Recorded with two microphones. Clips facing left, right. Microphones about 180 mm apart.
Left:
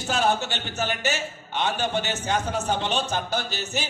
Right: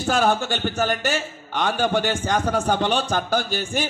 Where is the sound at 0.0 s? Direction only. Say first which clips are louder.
Right 4 dB; 50° right (ahead or behind).